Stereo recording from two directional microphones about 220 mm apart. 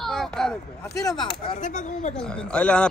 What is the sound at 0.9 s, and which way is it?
Speech, 15° left (ahead or behind).